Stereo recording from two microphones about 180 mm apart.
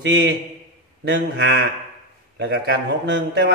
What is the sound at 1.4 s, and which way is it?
Speech, 70° right (ahead or behind).